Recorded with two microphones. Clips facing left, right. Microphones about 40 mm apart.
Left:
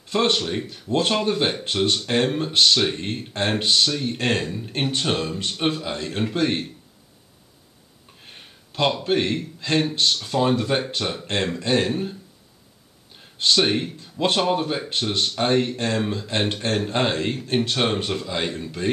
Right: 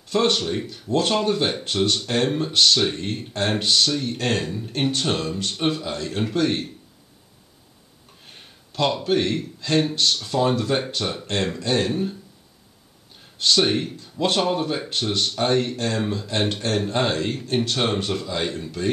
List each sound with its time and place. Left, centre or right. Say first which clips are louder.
0.1 s speech: even; centre
8.3 s a sound: left 1 dB; centre
9.0 s speech: even; centre
13.4 s speech: even; centre